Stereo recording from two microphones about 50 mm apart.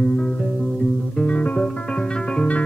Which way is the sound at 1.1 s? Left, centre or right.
Left.